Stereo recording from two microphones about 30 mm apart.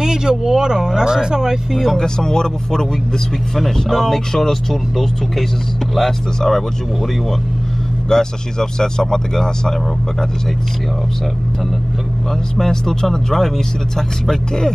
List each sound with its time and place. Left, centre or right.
0.0 s speech: right
2.0 s speech: left
4.1 s speech: centre
8.1 s speech: left
12.5 s speech: centre